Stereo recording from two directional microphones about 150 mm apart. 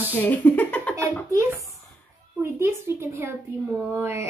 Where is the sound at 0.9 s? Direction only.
20° right (ahead or behind).